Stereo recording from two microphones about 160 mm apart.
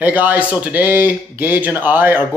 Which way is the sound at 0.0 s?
10° right (ahead or behind).